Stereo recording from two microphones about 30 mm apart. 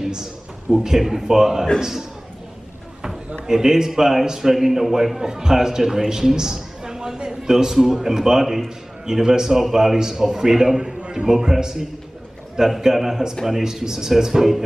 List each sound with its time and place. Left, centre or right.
0.0 s a sound: centre
0.8 s a man's voice: centre
3.4 s a man's voice: centre
5.2 s a man's voice: right
9.9 s a man's voice: right
10.8 s a man's voice: right; by 14.6 s centre